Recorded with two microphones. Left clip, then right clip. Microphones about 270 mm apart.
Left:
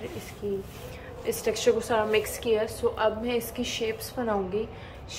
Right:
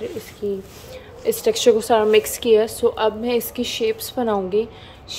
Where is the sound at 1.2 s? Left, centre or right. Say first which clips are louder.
Right 9 dB; right.